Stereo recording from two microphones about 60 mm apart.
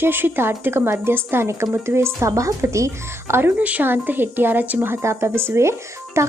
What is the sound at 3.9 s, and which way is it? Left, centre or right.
A woman's voice, right.